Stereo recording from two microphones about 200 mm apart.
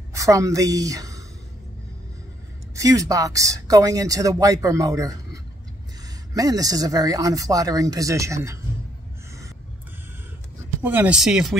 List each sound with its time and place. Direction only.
0.1 s a woman's voice: 15° right (ahead or behind)
2.7 s speech: 15° right (ahead or behind)
10.8 s speech: 10° right (ahead or behind)